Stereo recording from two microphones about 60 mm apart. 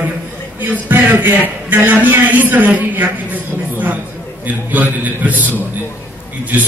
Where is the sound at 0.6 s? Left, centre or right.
Right.